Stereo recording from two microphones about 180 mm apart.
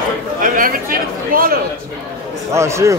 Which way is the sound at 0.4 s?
50° right (ahead or behind).